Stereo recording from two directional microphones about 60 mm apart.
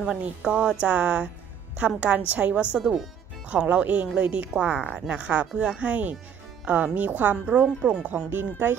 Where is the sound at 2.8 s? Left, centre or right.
Centre.